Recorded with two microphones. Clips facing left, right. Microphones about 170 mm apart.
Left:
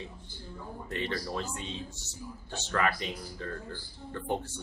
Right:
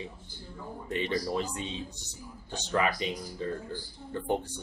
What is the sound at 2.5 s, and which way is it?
Speech, 15° right (ahead or behind).